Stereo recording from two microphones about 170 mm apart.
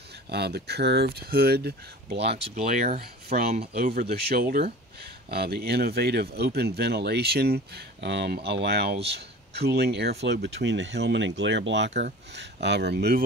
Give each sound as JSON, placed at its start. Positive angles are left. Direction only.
{"t": 0.3, "sound": "speech", "side_deg": -70}
{"t": 2.5, "sound": "speech", "side_deg": -45}
{"t": 3.7, "sound": "speech", "side_deg": -65}